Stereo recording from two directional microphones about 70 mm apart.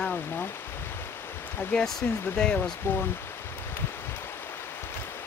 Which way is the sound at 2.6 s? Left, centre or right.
Left.